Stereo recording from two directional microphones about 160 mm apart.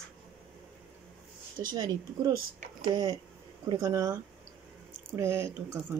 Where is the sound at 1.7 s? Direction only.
25° right (ahead or behind).